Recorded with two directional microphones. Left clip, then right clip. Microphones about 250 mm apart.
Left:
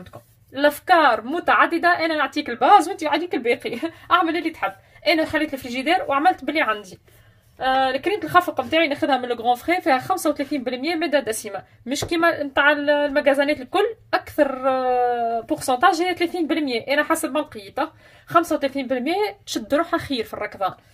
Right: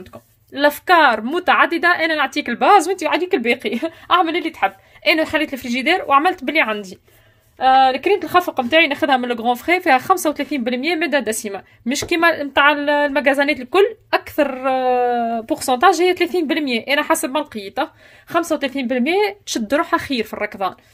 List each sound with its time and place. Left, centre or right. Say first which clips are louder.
0.6 s speech: right 3 dB; right